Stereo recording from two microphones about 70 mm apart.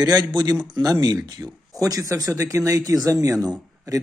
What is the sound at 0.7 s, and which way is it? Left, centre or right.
Speech, right.